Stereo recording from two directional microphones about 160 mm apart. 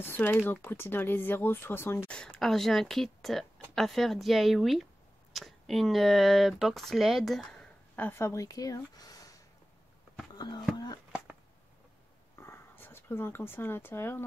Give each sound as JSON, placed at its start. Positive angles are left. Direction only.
{"t": 0.0, "sound": "speech", "side_deg": 15}
{"t": 11.1, "sound": "a sound", "side_deg": -5}
{"t": 12.4, "sound": "speech", "side_deg": 15}